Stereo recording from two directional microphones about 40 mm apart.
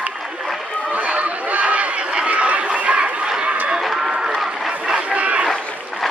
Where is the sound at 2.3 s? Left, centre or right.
Right.